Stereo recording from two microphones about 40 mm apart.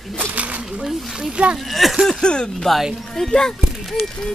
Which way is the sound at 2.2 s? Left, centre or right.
Left.